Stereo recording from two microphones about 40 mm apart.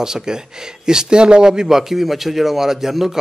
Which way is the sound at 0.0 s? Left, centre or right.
Centre.